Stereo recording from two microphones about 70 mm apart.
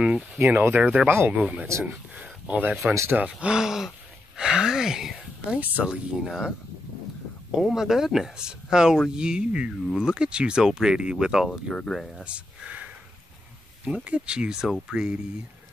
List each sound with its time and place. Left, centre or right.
0.4 s speech: right
1.0 s speech: right
1.3 s speech: centre
1.7 s speech: right
2.1 s speech: centre
5.6 s speech: right
6.2 s speech: centre
7.5 s speech: centre
11.7 s speech: centre
12.3 s a sound: centre
13.8 s speech: centre